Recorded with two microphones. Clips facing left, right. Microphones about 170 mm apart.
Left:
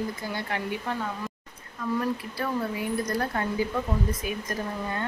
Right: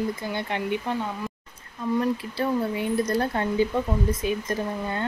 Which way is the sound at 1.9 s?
25° right (ahead or behind).